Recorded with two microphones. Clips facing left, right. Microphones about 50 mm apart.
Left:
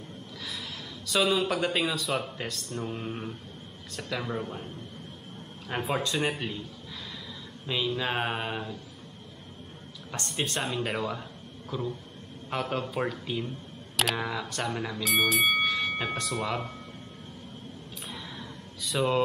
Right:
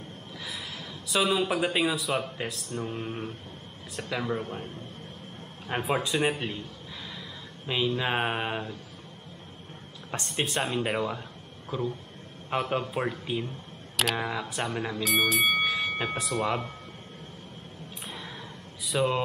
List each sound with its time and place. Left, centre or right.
1.0 s speech: centre
5.7 s speech: centre
7.6 s speech: centre
10.2 s speech: centre
11.7 s a man's voice: right
15.0 s speech: centre
15.7 s a sound: centre
18.9 s speech: centre